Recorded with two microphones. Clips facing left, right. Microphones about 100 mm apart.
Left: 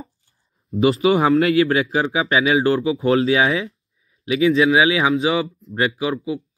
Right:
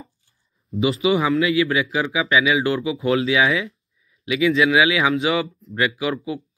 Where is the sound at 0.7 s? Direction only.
40° left (ahead or behind).